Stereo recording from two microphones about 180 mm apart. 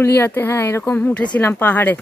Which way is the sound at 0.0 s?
15° left (ahead or behind).